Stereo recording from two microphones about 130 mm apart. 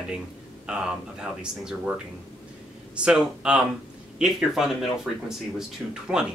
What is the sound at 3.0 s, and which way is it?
Speech, 5° right (ahead or behind).